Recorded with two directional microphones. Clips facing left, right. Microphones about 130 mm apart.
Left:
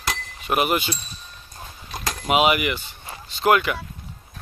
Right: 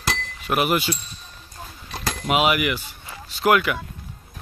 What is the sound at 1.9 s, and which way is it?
Cutlery, centre (ahead or behind).